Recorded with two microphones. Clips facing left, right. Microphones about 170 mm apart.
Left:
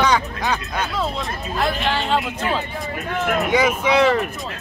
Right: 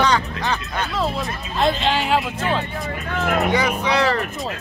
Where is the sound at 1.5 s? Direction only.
20° right (ahead or behind).